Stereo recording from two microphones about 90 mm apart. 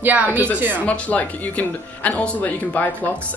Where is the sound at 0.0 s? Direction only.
20° right (ahead or behind).